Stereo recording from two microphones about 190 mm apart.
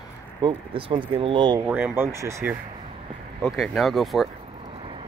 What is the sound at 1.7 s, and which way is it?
Speech, 10° right (ahead or behind).